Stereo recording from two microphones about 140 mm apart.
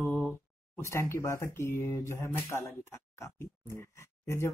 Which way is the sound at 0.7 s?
20° left (ahead or behind).